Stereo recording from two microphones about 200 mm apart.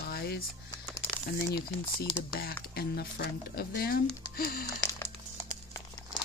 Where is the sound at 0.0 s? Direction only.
50° left (ahead or behind).